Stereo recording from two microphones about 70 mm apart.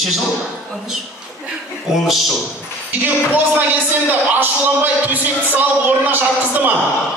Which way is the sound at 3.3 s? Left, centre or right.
Right.